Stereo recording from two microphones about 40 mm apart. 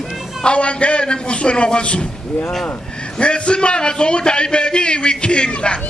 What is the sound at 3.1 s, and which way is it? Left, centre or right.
A man's voice, left.